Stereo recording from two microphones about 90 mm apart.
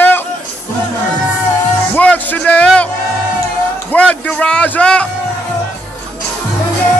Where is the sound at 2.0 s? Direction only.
15° left (ahead or behind).